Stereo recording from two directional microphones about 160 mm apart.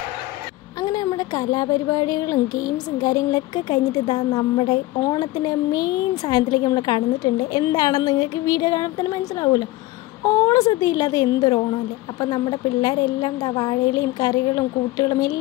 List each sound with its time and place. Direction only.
0.8 s a woman's voice: 25° left (ahead or behind)